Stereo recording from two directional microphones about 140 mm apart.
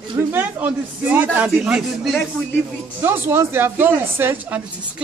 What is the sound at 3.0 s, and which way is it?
Speech, 15° right (ahead or behind).